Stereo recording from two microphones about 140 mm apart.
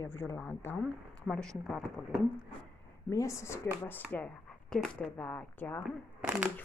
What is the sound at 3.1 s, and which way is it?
Speech, 20° left (ahead or behind).